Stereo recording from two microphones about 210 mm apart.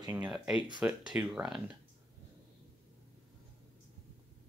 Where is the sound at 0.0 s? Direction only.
20° right (ahead or behind).